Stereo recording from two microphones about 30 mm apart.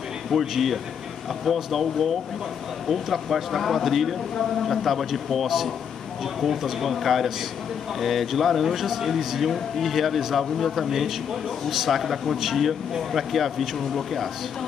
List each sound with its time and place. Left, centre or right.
0.3 s speech: centre